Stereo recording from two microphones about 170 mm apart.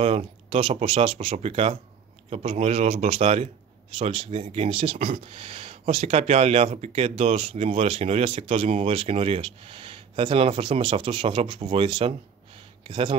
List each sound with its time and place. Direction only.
0.0 s speech: 35° right (ahead or behind)